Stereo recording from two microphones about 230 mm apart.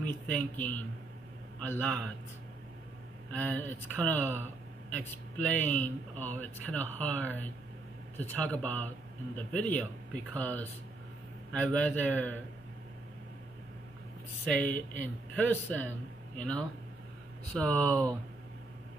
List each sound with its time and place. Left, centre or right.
0.0 s speech: centre
3.3 s a man's voice: centre
14.4 s a man's voice: centre